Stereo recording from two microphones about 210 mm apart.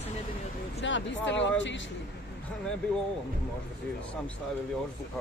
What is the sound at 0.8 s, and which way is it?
Speech, 60° left (ahead or behind).